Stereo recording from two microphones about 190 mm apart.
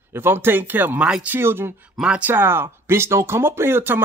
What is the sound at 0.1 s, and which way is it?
Speech, 10° right (ahead or behind).